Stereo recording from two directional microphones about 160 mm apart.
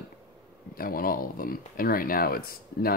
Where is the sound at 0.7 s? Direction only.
65° left (ahead or behind).